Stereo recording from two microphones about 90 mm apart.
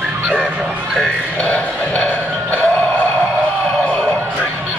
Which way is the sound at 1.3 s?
15° left (ahead or behind).